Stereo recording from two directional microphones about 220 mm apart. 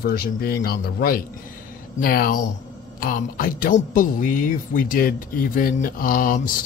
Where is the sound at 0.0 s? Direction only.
45° left (ahead or behind).